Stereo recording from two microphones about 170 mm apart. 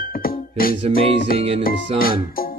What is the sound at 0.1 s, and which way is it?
Music, 60° left (ahead or behind).